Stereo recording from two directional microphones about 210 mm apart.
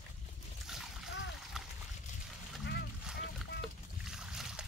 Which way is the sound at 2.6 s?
55° left (ahead or behind).